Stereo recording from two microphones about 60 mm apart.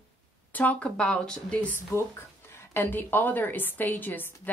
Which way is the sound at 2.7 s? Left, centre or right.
Left.